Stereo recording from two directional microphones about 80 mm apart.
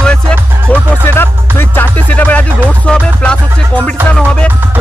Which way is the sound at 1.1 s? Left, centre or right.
Left.